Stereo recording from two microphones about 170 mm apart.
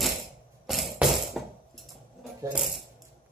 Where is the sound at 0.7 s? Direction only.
Centre (ahead or behind).